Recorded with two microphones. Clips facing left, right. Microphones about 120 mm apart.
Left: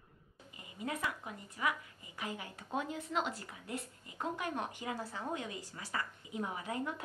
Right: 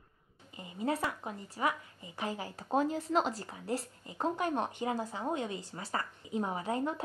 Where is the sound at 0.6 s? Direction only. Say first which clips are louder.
Right 6 dB; 30° right (ahead or behind).